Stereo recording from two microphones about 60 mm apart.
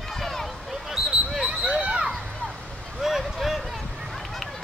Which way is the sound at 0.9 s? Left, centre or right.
Centre.